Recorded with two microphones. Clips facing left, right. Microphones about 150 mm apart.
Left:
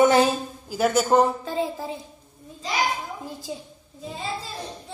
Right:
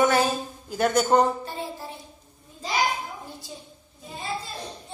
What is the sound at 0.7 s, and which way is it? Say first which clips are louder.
Speech: left 1 dB; 5° left (ahead or behind).